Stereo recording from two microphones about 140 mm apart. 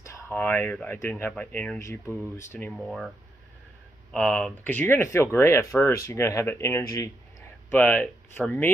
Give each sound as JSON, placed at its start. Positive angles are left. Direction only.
{"t": 0.0, "sound": "a sound", "side_deg": 20}
{"t": 0.9, "sound": "speech", "side_deg": 15}
{"t": 1.8, "sound": "speech", "side_deg": 20}
{"t": 2.7, "sound": "speech", "side_deg": 0}
{"t": 4.1, "sound": "speech", "side_deg": 5}